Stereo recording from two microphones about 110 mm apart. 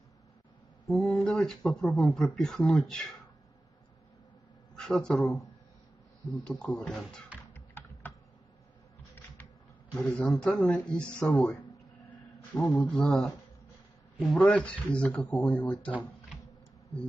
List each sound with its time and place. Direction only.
0.8 s speech: 5° left (ahead or behind)
4.7 s speech: 5° left (ahead or behind)
6.4 s speech: 10° left (ahead or behind)
7.5 s typing: 20° left (ahead or behind)
9.9 s speech: 10° left (ahead or behind)
12.5 s speech: 5° left (ahead or behind)
14.3 s speech: 10° left (ahead or behind)